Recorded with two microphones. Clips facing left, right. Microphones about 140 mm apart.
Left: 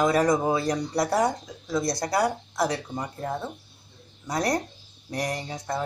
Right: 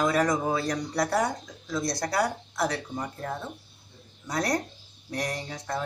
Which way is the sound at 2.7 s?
15° left (ahead or behind).